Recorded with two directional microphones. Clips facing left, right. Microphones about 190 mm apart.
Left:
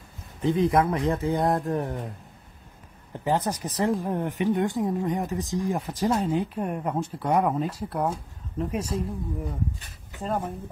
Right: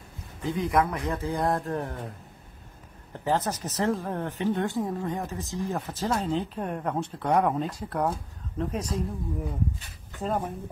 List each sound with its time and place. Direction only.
0.4 s speech: 25° left (ahead or behind)
3.1 s speech: 15° left (ahead or behind)